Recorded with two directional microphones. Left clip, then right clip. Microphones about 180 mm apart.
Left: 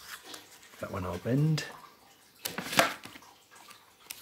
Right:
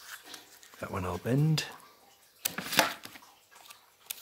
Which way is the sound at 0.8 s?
25° right (ahead or behind).